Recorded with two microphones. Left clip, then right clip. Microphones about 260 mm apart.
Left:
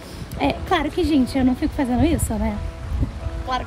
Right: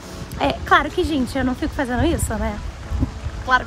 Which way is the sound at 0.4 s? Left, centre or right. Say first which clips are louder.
Right 4 dB; centre.